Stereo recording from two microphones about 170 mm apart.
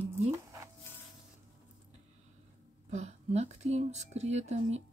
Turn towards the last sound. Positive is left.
turn(degrees=-40)  # may be behind; listen again after turning